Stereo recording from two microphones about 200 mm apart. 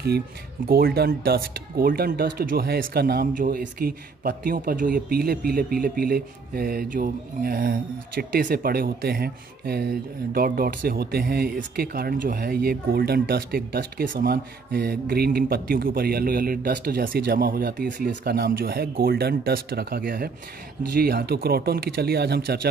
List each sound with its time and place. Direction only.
0.7 s speech: 50° right (ahead or behind)